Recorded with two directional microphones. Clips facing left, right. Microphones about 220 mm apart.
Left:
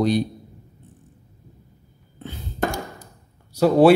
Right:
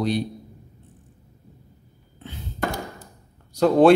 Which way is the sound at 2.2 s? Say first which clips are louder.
Left 3 dB; 45° left (ahead or behind).